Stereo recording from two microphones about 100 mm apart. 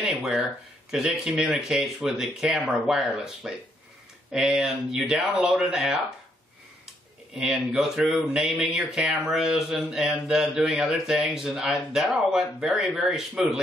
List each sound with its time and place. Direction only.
0.0 s speech: 5° right (ahead or behind)
7.3 s speech: 5° right (ahead or behind)